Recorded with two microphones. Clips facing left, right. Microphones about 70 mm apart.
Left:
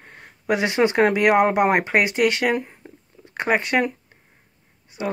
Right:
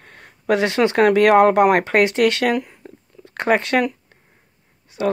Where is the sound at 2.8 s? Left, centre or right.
Centre.